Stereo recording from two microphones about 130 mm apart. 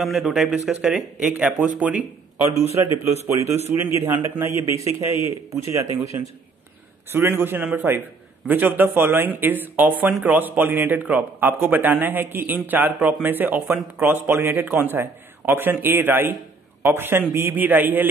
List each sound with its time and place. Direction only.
0.0 s speech: centre (ahead or behind); by 5.9 s 20° right (ahead or behind)
7.1 s speech: 20° right (ahead or behind)